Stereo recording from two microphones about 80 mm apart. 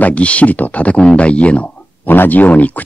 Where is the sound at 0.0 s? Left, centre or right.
Centre.